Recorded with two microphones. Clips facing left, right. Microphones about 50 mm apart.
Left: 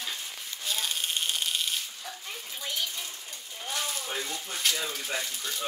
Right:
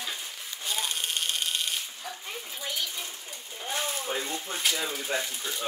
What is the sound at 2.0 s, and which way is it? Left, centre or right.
Speech, centre.